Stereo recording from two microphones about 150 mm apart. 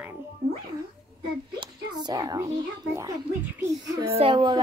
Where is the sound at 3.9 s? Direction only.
35° right (ahead or behind).